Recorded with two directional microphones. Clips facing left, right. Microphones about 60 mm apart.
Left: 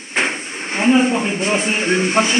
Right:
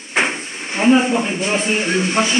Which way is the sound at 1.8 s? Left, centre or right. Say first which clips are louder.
Left 2 dB; left.